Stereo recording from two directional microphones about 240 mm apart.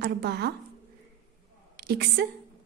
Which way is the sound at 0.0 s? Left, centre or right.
Right.